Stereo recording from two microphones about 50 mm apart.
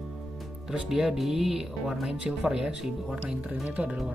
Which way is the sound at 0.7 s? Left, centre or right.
Centre.